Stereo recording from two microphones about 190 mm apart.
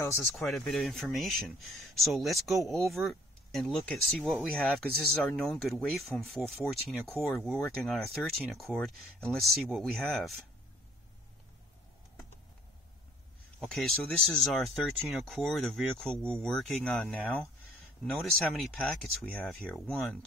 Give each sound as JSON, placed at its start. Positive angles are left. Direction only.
{"t": 0.2, "sound": "speech", "side_deg": 0}
{"t": 13.6, "sound": "speech", "side_deg": 0}